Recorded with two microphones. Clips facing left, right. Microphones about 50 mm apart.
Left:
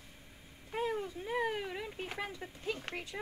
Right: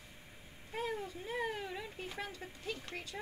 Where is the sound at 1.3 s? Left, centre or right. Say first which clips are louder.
Left 4 dB; left.